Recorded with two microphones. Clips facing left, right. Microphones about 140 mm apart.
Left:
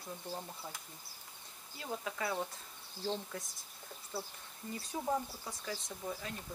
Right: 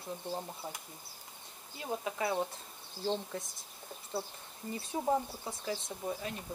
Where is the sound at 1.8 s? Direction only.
20° right (ahead or behind).